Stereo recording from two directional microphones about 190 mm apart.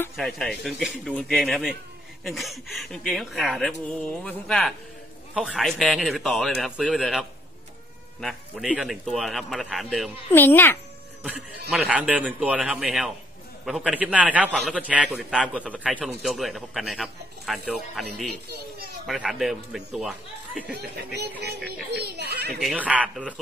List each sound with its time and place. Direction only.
0.1 s speech: centre (ahead or behind)
10.3 s a child's voice: 10° left (ahead or behind)
11.7 s a man's voice: 5° right (ahead or behind)
20.7 s a child's voice: 60° right (ahead or behind)
22.6 s speech: 5° right (ahead or behind)